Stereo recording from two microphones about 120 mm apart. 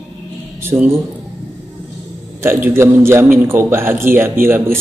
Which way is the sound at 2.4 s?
20° right (ahead or behind).